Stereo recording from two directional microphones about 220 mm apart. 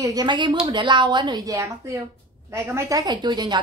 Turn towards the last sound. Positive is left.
turn(degrees=-20)  # may be behind; listen again after turning